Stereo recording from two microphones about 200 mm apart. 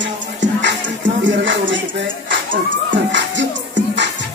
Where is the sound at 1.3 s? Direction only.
65° right (ahead or behind).